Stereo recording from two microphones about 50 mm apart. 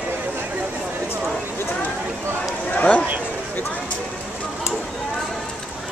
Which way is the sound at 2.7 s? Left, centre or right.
Left.